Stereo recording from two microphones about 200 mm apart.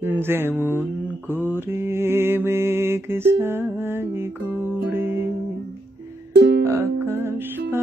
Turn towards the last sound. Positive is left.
turn(degrees=-10)  # may be behind; listen again after turning